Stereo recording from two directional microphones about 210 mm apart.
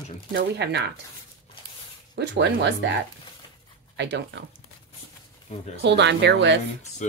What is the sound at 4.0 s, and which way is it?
Speech, 55° right (ahead or behind).